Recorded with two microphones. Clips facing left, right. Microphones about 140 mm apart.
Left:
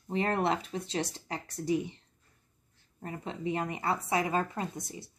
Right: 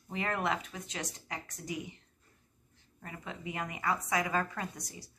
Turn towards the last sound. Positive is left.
turn(degrees=25)  # may be behind; listen again after turning